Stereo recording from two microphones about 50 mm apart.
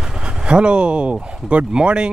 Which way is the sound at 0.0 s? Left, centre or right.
Centre.